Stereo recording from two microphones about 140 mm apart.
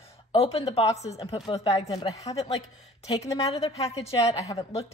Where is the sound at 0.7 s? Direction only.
50° left (ahead or behind).